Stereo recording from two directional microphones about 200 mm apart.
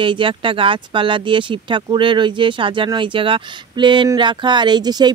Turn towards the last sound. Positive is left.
turn(degrees=-20)  # may be behind; listen again after turning